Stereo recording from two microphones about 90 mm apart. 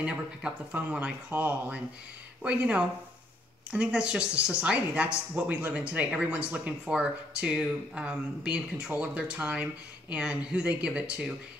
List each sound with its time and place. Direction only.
0.0 s speech: 10° right (ahead or behind)